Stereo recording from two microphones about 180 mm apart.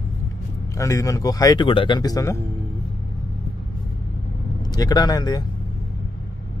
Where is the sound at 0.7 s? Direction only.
15° left (ahead or behind).